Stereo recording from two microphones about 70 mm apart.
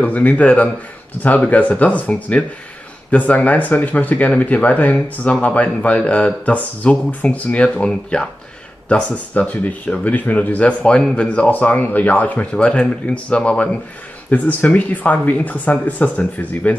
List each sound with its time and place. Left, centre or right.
0.0 s speech: left